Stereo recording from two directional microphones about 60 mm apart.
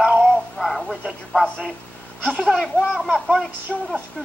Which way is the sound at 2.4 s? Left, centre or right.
Centre.